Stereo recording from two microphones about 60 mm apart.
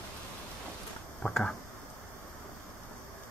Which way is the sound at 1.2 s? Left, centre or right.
Left.